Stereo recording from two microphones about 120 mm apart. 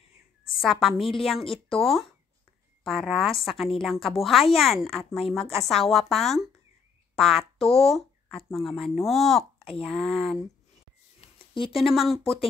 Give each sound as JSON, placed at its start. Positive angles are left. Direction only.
{"t": 0.6, "sound": "a woman's voice", "side_deg": 0}
{"t": 2.8, "sound": "a woman's voice", "side_deg": 0}
{"t": 11.3, "sound": "a sound", "side_deg": 45}
{"t": 11.8, "sound": "a woman's voice", "side_deg": 0}